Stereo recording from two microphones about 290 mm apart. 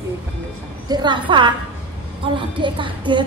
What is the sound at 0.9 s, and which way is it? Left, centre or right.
A woman's voice, centre.